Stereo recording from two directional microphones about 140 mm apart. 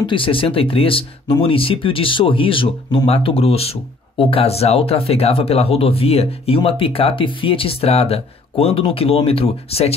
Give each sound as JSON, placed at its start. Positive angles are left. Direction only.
{"t": 0.0, "sound": "speech", "side_deg": 40}